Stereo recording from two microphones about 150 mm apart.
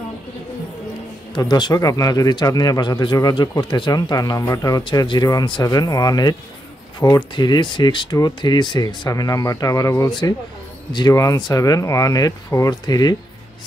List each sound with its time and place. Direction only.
1.3 s speech: 30° left (ahead or behind)